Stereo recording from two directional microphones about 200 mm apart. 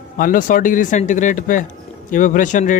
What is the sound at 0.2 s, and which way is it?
A man's voice, 45° left (ahead or behind).